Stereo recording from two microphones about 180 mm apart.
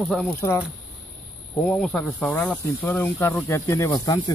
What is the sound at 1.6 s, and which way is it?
Speech, 5° left (ahead or behind).